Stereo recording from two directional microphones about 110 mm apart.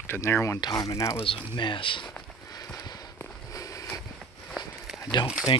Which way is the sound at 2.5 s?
35° left (ahead or behind).